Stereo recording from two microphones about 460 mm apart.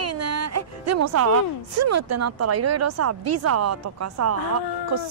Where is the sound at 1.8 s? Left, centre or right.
Right.